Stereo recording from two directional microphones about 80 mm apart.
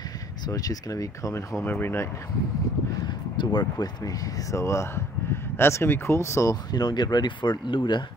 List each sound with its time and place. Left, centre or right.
0.5 s speech: left
1.3 s speech: left
3.3 s speech: left
4.5 s speech: left
6.5 s speech: left